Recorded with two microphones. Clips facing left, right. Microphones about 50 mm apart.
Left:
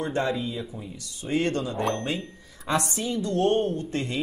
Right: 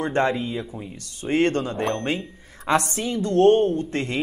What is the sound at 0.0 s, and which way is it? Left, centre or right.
Speech, right.